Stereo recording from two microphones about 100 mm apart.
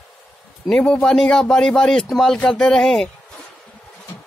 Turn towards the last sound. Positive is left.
turn(degrees=5)  # may be behind; listen again after turning